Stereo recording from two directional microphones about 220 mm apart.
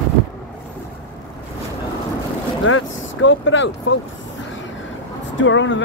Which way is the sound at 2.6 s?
65° left (ahead or behind).